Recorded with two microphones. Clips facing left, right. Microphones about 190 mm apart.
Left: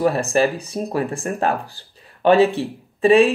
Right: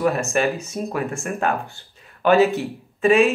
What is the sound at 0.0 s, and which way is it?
Speech, 35° left (ahead or behind).